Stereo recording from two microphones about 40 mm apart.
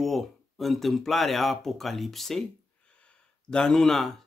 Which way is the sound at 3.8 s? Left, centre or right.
Centre.